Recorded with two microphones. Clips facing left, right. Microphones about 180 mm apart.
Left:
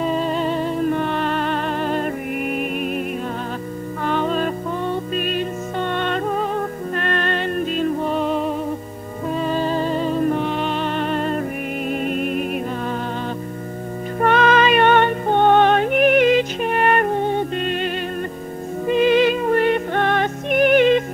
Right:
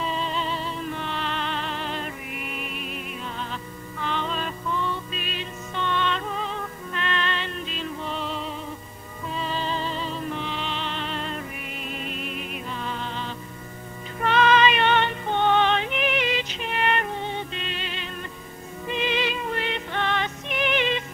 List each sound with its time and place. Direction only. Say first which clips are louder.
0.0 s music: left 8 dB; 50° left (ahead or behind)
4.0 s music: left 8 dB; 50° left (ahead or behind)
14.2 s music: left 4 dB; 50° left (ahead or behind)